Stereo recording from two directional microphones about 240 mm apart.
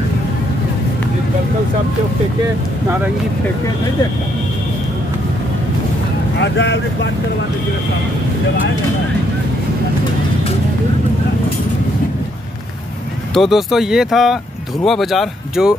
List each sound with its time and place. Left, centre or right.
6.4 s speech: left
13.3 s speech: centre